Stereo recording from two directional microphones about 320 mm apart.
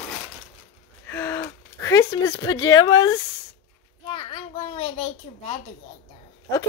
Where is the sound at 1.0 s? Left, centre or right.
Centre.